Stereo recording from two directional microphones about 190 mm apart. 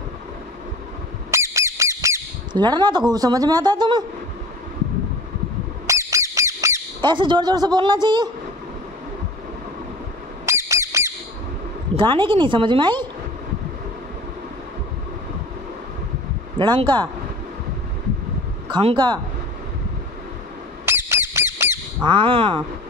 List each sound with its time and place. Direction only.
1.3 s squawk: 15° right (ahead or behind)
5.9 s squawk: 15° right (ahead or behind)
10.4 s squawk: 15° right (ahead or behind)
11.9 s speech: 25° right (ahead or behind)
16.5 s speech: 25° right (ahead or behind)
18.7 s speech: 25° right (ahead or behind)
20.8 s squawk: 10° right (ahead or behind)
22.0 s speech: 25° right (ahead or behind)